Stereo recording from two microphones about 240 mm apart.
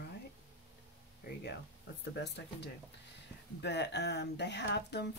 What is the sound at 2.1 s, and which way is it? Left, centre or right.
Speech, left.